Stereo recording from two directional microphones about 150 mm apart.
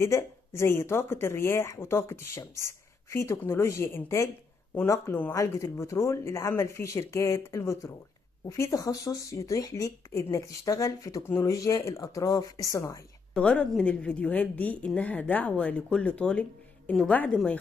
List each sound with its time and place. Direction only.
0.0 s a woman's voice: 15° left (ahead or behind)
13.3 s a woman's voice: 10° left (ahead or behind)